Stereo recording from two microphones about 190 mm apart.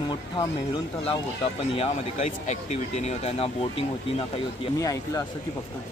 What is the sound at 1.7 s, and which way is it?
Speech, 35° left (ahead or behind).